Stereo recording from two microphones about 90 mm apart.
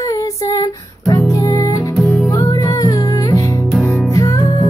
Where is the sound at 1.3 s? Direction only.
40° left (ahead or behind).